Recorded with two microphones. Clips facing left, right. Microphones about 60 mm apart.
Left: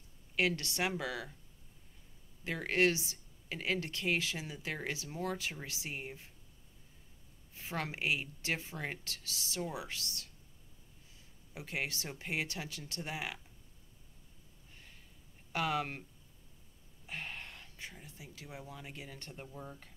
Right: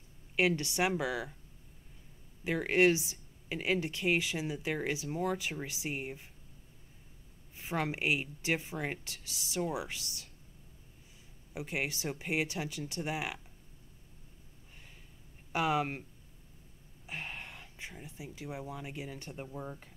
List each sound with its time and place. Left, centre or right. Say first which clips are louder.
0.4 s speech: right 4 dB; centre
2.4 s speech: right 4 dB; centre
7.5 s speech: right 5 dB; right
11.5 s speech: right 3 dB; centre
15.5 s speech: right 4 dB; centre
17.0 s speech: right 2 dB; centre